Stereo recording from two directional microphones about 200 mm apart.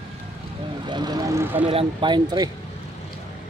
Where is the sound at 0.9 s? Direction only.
20° right (ahead or behind).